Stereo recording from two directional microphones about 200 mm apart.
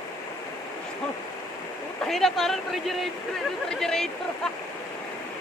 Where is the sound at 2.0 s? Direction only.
Centre (ahead or behind).